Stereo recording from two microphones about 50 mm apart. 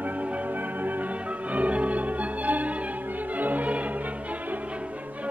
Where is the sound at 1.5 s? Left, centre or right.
Right.